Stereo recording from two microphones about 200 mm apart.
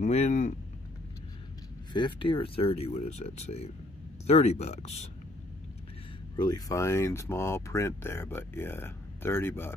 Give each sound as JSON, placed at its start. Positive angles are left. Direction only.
{"t": 0.0, "sound": "speech", "side_deg": 35}
{"t": 2.0, "sound": "speech", "side_deg": 25}
{"t": 6.3, "sound": "speech", "side_deg": 20}